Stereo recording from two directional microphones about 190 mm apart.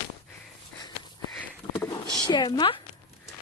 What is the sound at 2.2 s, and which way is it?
Speech, 20° left (ahead or behind).